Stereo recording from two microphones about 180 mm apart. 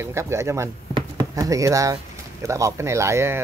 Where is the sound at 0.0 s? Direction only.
15° right (ahead or behind).